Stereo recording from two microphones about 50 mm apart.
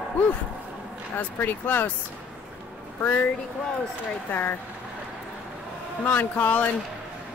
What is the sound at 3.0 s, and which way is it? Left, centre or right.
Speech, left.